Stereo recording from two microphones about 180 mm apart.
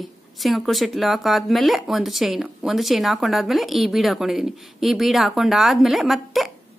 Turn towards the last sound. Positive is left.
turn(degrees=0)  # may be behind; listen again after turning